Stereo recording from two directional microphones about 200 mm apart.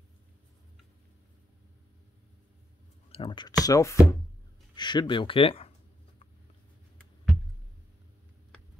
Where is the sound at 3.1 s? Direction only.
25° left (ahead or behind).